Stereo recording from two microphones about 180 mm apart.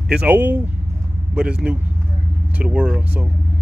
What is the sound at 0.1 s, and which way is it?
Speech, 10° right (ahead or behind).